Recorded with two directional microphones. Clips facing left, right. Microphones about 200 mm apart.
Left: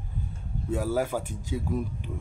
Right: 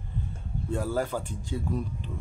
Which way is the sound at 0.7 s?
10° left (ahead or behind).